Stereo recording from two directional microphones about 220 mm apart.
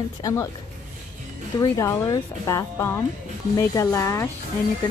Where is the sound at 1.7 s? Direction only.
15° left (ahead or behind).